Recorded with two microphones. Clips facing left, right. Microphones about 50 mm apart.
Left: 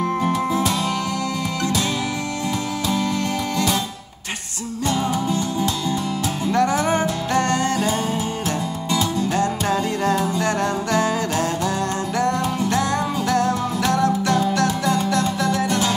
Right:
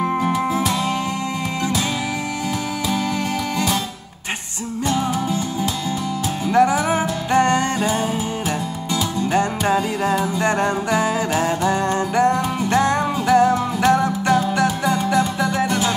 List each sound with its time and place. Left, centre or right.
4.8 s music: centre
8.9 s music: right